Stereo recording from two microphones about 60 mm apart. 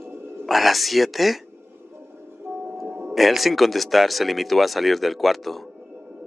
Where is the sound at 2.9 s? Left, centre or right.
Right.